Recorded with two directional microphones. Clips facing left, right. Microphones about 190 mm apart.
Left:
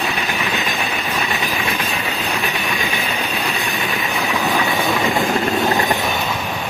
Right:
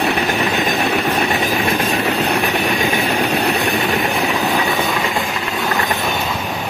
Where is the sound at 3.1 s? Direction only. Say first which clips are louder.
Right 6 dB; 70° right (ahead or behind).